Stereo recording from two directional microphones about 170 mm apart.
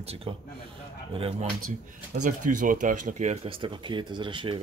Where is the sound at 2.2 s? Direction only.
50° right (ahead or behind); by 4.6 s 30° right (ahead or behind).